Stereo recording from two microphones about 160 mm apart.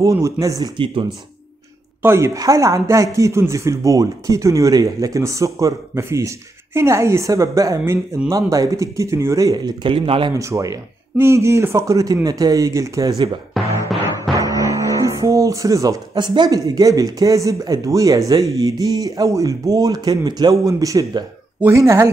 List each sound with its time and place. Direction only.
0.0 s speech: 20° right (ahead or behind)
2.0 s speech: 15° right (ahead or behind); by 10.3 s 35° right (ahead or behind)
10.3 s speech: 20° right (ahead or behind)
13.6 s music: centre (ahead or behind)
14.4 s speech: 20° right (ahead or behind)